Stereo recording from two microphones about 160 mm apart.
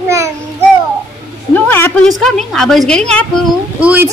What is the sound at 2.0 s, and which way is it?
Speech, centre (ahead or behind).